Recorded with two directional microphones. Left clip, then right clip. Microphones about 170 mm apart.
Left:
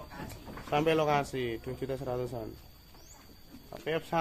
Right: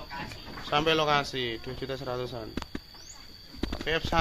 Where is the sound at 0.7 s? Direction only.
20° left (ahead or behind).